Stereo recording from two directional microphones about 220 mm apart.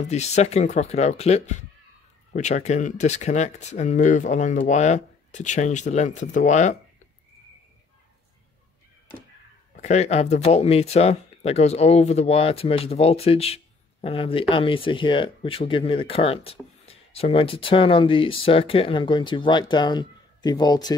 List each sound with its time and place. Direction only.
0.1 s speech: 30° left (ahead or behind)
9.8 s speech: 30° left (ahead or behind)